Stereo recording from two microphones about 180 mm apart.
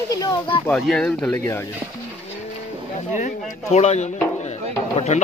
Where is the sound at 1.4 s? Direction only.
15° left (ahead or behind).